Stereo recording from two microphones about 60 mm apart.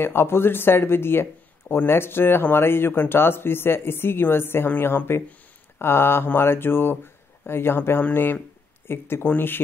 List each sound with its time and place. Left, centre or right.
0.0 s speech: left